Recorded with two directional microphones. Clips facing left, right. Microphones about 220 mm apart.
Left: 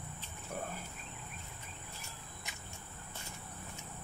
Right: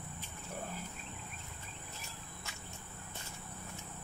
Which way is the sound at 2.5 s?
15° left (ahead or behind).